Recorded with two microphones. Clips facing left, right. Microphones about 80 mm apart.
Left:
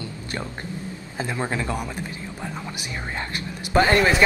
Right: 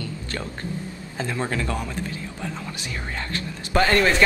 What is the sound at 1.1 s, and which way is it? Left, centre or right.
Speech, centre.